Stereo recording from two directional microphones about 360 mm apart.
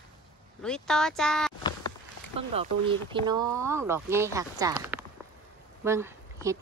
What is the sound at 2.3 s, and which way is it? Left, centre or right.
Speech, centre.